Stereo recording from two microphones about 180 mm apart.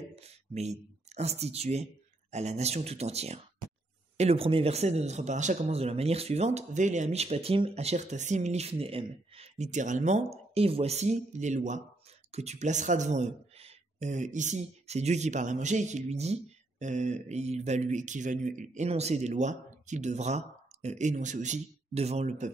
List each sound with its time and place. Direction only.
0.1 s a man's voice: 35° right (ahead or behind)